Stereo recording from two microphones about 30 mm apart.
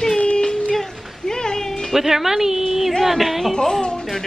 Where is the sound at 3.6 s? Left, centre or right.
Centre.